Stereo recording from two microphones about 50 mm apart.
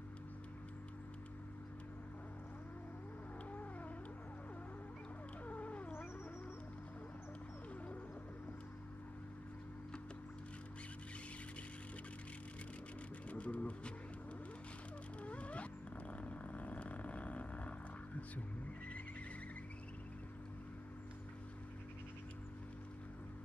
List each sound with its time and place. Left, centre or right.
5.5 s cat: left
13.3 s music: left
15.2 s a sound: left